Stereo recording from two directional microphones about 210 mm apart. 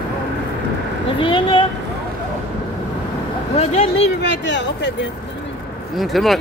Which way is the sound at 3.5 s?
30° left (ahead or behind).